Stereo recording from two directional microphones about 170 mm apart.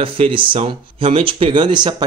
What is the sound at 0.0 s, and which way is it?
Speech, 30° right (ahead or behind).